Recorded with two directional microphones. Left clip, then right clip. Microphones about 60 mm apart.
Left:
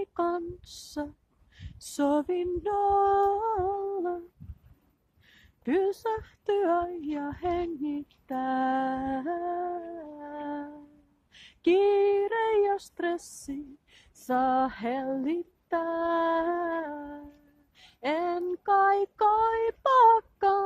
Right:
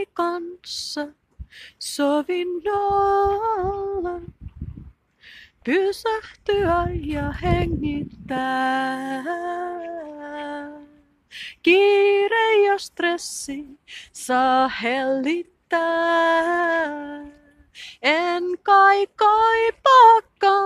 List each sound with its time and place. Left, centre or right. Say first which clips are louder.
0.0 s a sound: right 5 dB; left
2.0 s female singing: right 5 dB; left
3.4 s music: right 5 dB; left
5.2 s a sound: right 15 dB; left
5.7 s female singing: right 6 dB; left
7.2 s music: right 7 dB; left
11.3 s speech: right 17 dB; left
11.6 s a sound: right 7 dB; centre
18.6 s music: right 9 dB; centre